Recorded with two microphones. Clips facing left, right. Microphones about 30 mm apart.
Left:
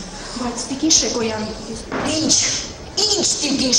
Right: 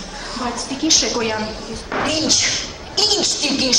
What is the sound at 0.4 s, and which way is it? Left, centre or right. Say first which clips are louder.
Speech: even; centre.